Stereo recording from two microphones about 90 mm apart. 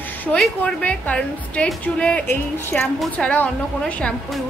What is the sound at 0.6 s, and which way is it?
A woman's voice, 15° left (ahead or behind).